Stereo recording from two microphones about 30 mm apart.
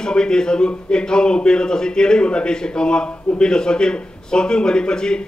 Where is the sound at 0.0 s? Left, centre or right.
Left.